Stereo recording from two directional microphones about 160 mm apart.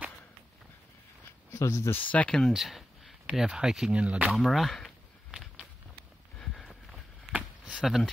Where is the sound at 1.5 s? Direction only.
20° left (ahead or behind).